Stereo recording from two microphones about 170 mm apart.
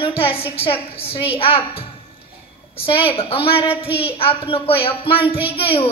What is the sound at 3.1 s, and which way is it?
A woman's voice, 30° left (ahead or behind).